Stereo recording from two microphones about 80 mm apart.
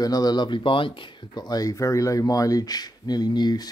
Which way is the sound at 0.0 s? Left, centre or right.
Left.